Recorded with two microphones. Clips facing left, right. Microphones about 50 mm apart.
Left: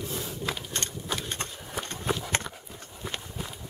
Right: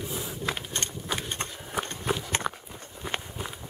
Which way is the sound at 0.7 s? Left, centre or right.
Right.